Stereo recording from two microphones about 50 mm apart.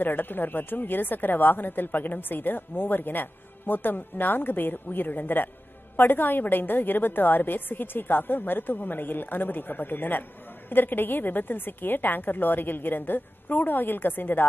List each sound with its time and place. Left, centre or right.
0.0 s a woman's voice: left